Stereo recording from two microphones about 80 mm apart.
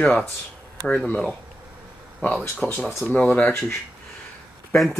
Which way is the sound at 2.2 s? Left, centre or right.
Left.